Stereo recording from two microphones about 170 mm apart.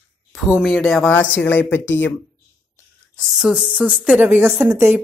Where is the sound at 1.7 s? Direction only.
90° left.